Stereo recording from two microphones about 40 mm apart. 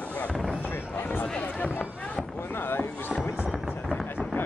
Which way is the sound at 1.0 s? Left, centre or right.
Left.